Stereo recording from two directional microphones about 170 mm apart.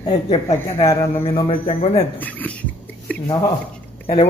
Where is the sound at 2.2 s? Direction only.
10° left (ahead or behind).